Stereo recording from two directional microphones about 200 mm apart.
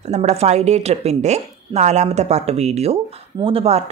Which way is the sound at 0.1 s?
35° right (ahead or behind).